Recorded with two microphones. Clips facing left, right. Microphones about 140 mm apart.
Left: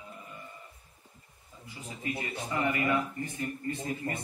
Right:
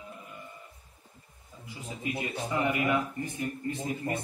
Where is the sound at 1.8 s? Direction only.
15° right (ahead or behind).